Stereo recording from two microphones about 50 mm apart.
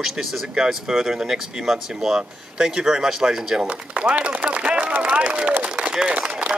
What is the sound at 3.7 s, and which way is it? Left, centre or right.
Speech, right.